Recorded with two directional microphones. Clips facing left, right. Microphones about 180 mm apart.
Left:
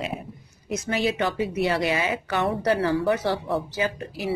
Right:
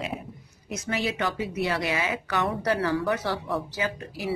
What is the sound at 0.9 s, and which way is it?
Speech, 30° left (ahead or behind).